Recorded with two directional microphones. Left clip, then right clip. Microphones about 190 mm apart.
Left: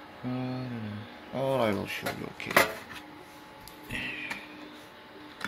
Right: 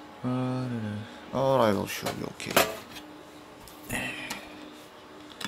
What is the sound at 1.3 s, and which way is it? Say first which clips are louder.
Speech: right 4 dB; 20° right (ahead or behind).